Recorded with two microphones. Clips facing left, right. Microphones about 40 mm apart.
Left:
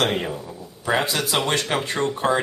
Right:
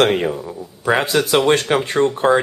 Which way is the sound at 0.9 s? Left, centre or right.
Right.